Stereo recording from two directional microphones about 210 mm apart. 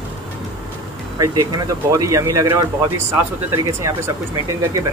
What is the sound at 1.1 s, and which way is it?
Speech, 20° right (ahead or behind).